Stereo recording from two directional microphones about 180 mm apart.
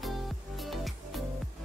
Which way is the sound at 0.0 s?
Centre (ahead or behind).